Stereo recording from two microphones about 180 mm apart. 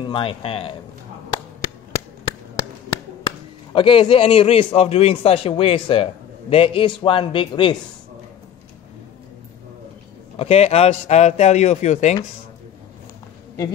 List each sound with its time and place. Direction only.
0.0 s a man's voice: 30° left (ahead or behind)
2.5 s a man's voice: 25° left (ahead or behind)
10.4 s speech: 35° left (ahead or behind)